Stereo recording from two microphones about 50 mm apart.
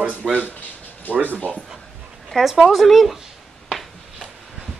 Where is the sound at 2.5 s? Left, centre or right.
Centre.